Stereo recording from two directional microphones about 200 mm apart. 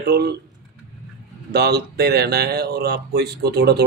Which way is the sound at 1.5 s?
55° right (ahead or behind).